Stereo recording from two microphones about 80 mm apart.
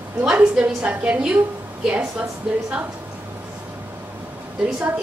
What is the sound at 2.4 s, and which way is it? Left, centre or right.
Speech, centre.